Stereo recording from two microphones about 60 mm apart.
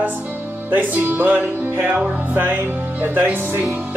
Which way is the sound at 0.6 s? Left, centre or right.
Right.